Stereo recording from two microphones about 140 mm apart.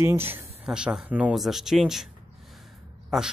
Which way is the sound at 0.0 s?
15° right (ahead or behind).